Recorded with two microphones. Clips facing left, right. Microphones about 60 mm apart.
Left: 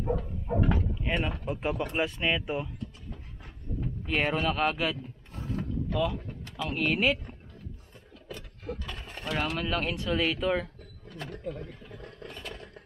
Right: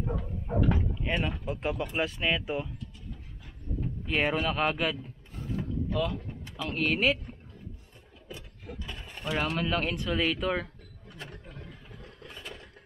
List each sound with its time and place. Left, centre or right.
0.1 s dog: centre
0.7 s dog: centre
1.4 s speech: centre
2.8 s a sound: left
4.1 s speech: centre
6.5 s speech: centre
8.3 s a sound: left
9.2 s speech: centre
12.3 s vehicle: centre